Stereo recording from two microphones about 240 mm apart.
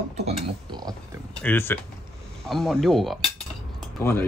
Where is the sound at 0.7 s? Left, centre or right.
Centre.